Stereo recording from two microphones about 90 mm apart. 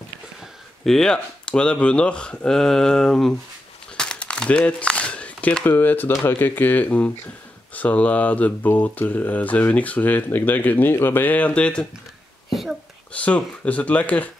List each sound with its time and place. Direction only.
0.8 s speech: 5° left (ahead or behind)
3.9 s crumpling: 10° left (ahead or behind)
6.2 s speech: 25° left (ahead or behind)
12.4 s a sound: centre (ahead or behind)
13.1 s speech: 15° left (ahead or behind)